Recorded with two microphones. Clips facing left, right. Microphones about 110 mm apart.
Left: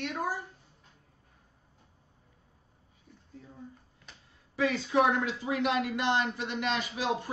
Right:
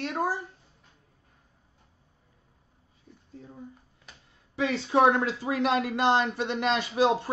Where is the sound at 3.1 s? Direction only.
Centre (ahead or behind).